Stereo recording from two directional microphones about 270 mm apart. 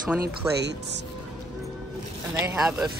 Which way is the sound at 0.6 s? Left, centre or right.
Right.